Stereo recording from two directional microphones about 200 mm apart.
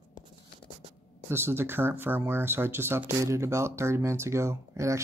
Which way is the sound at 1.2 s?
10° right (ahead or behind).